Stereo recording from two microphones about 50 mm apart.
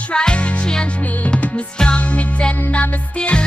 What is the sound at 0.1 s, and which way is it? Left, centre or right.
Music, centre.